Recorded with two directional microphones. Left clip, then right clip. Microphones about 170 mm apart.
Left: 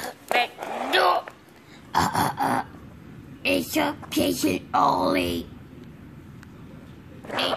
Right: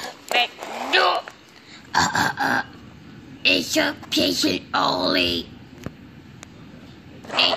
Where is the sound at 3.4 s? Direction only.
10° left (ahead or behind).